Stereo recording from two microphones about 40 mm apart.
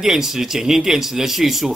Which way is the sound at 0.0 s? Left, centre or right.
Centre.